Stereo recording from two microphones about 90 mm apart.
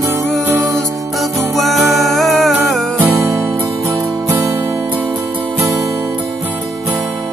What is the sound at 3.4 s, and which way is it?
Music, 20° right (ahead or behind).